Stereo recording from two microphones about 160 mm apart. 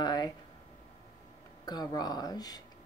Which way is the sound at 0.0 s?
25° left (ahead or behind).